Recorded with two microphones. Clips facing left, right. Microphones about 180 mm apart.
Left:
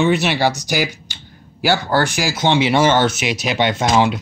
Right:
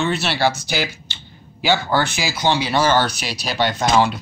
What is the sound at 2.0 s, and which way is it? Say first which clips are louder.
Speech: left 3 dB; 15° left (ahead or behind).